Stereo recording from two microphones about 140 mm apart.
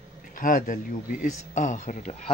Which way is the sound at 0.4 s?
70° left (ahead or behind).